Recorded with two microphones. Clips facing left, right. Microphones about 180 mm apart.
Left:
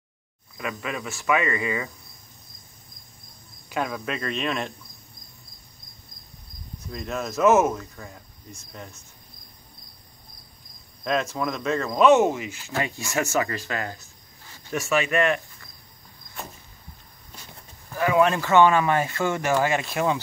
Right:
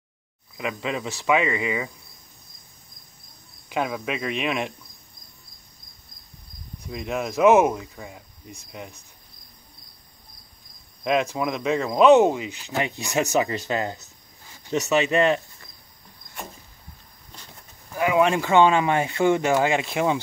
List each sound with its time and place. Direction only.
0.6 s speech: 20° right (ahead or behind)
3.6 s speech: 10° right (ahead or behind)
6.8 s speech: 15° right (ahead or behind)
11.1 s speech: 15° right (ahead or behind)
17.9 s speech: 15° right (ahead or behind)